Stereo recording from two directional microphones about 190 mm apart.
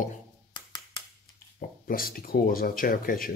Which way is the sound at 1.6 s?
50° left (ahead or behind).